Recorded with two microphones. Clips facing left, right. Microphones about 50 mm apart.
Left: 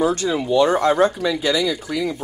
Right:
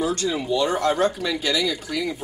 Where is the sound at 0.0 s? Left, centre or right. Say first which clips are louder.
Left 4 dB; left.